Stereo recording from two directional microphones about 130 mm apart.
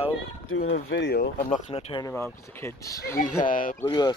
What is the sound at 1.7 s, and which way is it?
Speech, 50° left (ahead or behind).